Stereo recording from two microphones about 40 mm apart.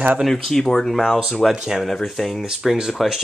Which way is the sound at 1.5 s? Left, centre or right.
Centre.